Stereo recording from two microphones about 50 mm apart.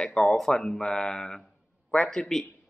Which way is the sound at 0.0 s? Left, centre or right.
Centre.